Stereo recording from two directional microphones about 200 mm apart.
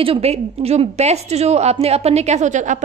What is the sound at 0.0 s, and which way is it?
A woman's voice, 30° right (ahead or behind).